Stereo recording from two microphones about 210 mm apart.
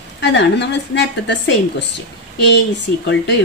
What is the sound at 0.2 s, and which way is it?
Speech, 55° left (ahead or behind).